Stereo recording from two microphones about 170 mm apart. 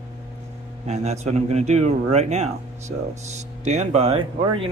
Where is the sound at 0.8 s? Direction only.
40° right (ahead or behind).